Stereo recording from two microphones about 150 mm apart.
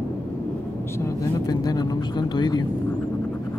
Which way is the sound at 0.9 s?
20° left (ahead or behind).